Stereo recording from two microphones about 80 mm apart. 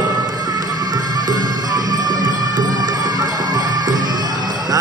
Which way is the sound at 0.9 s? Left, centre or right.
Right.